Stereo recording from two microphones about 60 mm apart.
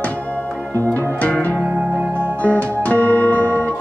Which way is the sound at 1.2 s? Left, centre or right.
Left.